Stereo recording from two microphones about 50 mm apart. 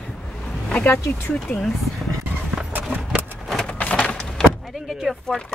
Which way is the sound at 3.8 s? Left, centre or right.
Left.